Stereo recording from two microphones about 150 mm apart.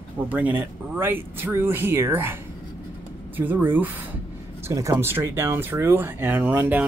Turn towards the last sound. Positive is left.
turn(degrees=-10)  # may be behind; listen again after turning